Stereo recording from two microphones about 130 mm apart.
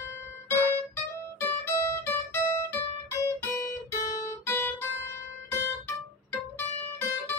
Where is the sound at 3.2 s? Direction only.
20° left (ahead or behind).